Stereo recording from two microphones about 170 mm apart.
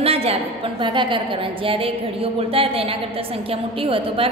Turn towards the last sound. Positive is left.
turn(degrees=-30)  # may be behind; listen again after turning